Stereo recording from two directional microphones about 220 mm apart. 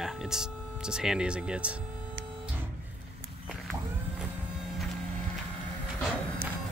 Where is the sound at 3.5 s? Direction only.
Centre (ahead or behind).